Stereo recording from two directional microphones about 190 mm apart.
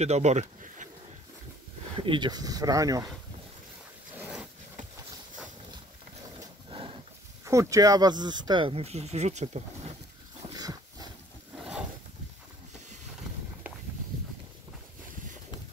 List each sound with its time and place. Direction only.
0.0 s speech: 35° right (ahead or behind)
2.0 s speech: 25° right (ahead or behind)
4.2 s a sound: 5° right (ahead or behind)
6.4 s wild animals: 30° right (ahead or behind)
7.4 s speech: 15° right (ahead or behind); by 9.9 s 35° right (ahead or behind)
10.5 s dog: 20° right (ahead or behind)